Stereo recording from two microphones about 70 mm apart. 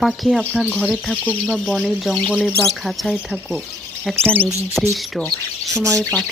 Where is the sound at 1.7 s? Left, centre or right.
Centre.